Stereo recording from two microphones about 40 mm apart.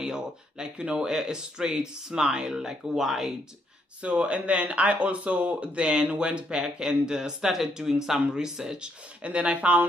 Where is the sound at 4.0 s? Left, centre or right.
Right.